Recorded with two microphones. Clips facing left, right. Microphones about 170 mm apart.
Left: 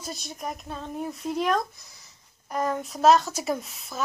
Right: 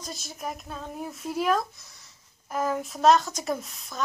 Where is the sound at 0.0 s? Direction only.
Centre (ahead or behind).